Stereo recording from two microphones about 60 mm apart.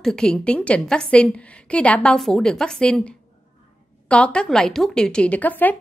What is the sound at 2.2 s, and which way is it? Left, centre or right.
A woman's voice, centre.